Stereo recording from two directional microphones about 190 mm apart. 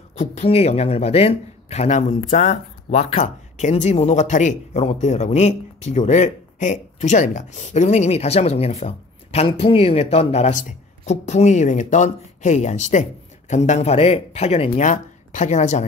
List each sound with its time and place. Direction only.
0.1 s speech: 35° left (ahead or behind)